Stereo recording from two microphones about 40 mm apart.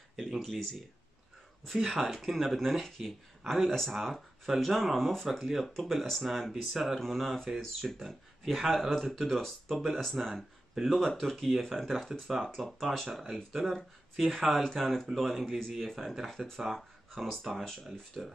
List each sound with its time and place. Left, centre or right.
0.1 s a sound: centre
1.7 s speech: centre
16.3 s speech: centre
18.2 s speech: right